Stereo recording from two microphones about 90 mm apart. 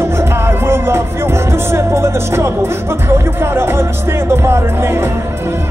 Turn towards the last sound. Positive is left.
turn(degrees=-25)  # may be behind; listen again after turning